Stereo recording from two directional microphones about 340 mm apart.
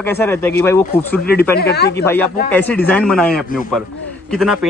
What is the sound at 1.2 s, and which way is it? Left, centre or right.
Speech, left.